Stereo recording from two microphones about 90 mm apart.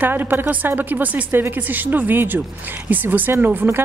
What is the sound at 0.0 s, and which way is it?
A woman's voice, 20° right (ahead or behind).